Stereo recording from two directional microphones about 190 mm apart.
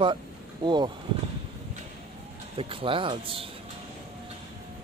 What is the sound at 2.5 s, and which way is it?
Speech, 30° right (ahead or behind).